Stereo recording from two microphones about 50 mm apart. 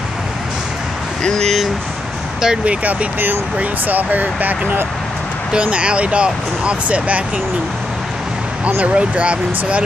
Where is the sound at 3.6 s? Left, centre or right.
Right.